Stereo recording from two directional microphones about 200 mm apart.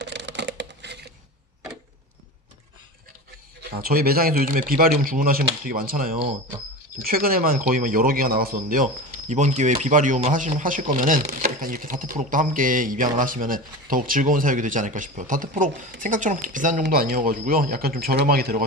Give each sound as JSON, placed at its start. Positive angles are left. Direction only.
{"t": 0.0, "sound": "computer keyboard", "side_deg": -60}
{"t": 3.8, "sound": "speech", "side_deg": -50}